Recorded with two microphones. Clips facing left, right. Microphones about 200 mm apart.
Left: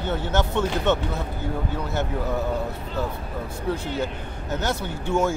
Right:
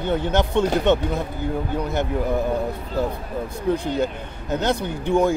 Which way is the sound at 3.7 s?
15° right (ahead or behind).